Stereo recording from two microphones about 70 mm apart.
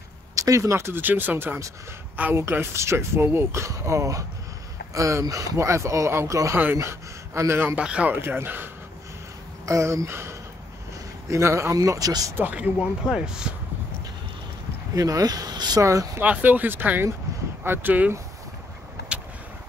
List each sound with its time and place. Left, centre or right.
0.4 s speech: right
1.0 s speech: right
2.5 s speech: right
7.7 s speech: centre
8.1 s speech: right
9.7 s speech: right
12.4 s speech: right
12.7 s speech: centre
15.0 s speech: right
15.8 s speech: right
16.2 s speech: right